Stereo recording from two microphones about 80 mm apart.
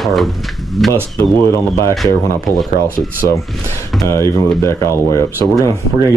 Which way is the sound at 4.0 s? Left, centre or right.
Left.